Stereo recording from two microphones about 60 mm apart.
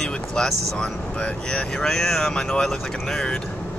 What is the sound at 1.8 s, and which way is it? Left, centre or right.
Speech, centre.